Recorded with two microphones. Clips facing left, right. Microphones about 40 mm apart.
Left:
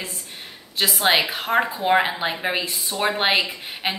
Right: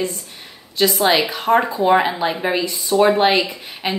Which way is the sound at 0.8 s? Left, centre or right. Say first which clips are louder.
Right 4 dB; left.